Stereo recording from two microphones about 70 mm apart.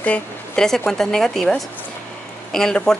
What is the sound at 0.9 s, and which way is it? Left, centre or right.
A woman's voice, centre.